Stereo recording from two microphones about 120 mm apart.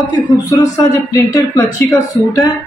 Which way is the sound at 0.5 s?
30° left (ahead or behind).